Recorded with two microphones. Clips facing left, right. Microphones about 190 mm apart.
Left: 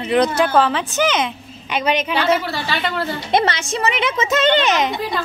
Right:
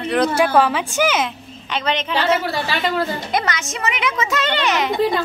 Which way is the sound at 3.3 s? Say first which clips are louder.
Left 4 dB; 30° left (ahead or behind).